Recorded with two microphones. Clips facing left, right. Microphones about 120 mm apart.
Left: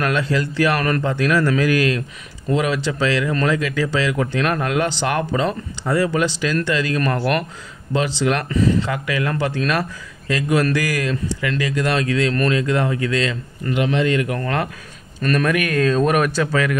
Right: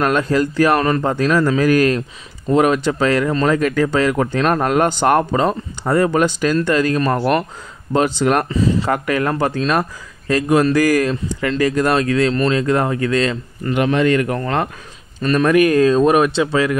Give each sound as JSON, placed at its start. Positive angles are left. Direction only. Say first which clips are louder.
{"t": 0.0, "sound": "speech", "louder": "right 4 dB", "side_deg": -45}
{"t": 0.7, "sound": "speech", "louder": "right 4 dB", "side_deg": -25}
{"t": 1.0, "sound": "speech", "louder": "right 2 dB", "side_deg": -40}
{"t": 7.0, "sound": "speech", "louder": "right 3 dB", "side_deg": -25}
{"t": 7.9, "sound": "speech", "louder": "right 4 dB", "side_deg": -45}
{"t": 8.5, "sound": "a man's voice", "louder": "right 1 dB", "side_deg": -30}
{"t": 8.9, "sound": "a man's voice", "louder": "right 4 dB", "side_deg": -45}
{"t": 14.4, "sound": "a man's voice", "louder": "right 3 dB", "side_deg": -30}